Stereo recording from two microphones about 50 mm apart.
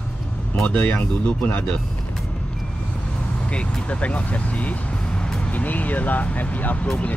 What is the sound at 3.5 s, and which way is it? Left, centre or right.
Speech, left.